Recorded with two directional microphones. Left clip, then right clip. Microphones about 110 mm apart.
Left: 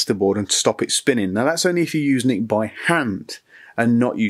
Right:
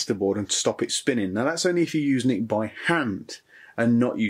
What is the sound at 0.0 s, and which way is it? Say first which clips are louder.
A man's voice: left 6 dB; 40° left (ahead or behind).